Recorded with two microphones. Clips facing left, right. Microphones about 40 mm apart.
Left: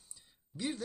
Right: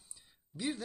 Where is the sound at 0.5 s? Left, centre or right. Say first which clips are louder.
Right 1 dB; centre.